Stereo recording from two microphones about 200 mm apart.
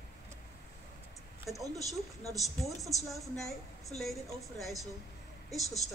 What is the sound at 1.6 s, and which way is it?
Speech, 15° right (ahead or behind).